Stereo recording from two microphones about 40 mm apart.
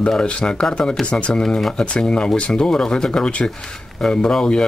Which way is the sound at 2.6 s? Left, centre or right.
Centre.